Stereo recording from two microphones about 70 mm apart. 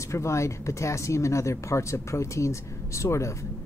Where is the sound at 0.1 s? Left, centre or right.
Left.